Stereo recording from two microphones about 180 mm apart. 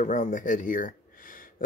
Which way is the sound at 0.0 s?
40° left (ahead or behind).